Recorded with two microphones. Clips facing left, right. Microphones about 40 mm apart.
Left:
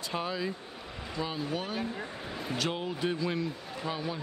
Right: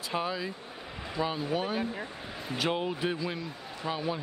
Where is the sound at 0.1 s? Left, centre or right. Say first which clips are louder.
Right 1 dB; centre.